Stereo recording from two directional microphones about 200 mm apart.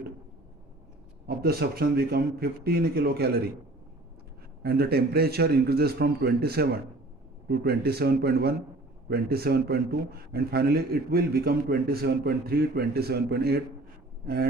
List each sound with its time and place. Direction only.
1.2 s a man's voice: 50° right (ahead or behind)
4.6 s a man's voice: 50° right (ahead or behind)